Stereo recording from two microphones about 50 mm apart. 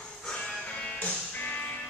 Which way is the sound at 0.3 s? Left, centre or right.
Centre.